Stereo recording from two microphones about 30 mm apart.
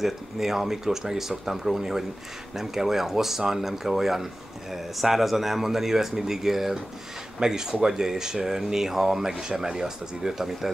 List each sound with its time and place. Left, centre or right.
0.0 s speech: centre